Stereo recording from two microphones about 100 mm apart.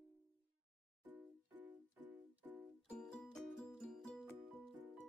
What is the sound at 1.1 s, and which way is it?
Music, 20° right (ahead or behind).